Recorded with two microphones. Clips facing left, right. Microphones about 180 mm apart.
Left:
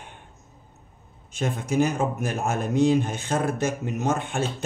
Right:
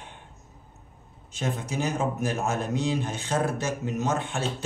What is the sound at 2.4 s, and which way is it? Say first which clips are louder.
Speech: left 10 dB; 55° left (ahead or behind).